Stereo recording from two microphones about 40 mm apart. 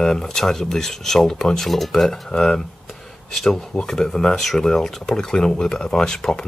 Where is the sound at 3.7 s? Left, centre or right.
Centre.